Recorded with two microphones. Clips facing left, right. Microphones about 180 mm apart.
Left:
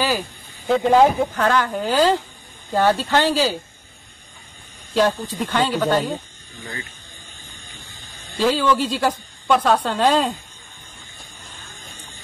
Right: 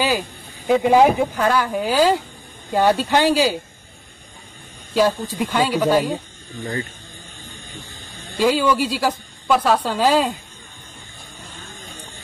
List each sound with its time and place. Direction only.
0.7 s a woman's voice: 10° right (ahead or behind)
4.9 s a woman's voice: 10° right (ahead or behind)
6.6 s speech: 40° right (ahead or behind)
8.4 s a woman's voice: 10° right (ahead or behind)